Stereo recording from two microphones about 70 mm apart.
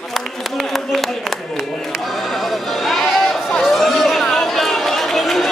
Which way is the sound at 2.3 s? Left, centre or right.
Centre.